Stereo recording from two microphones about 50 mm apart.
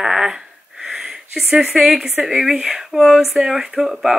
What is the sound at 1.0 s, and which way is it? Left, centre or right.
Speech, centre.